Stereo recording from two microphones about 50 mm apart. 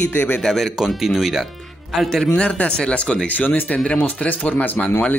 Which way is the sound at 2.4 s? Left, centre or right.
Left.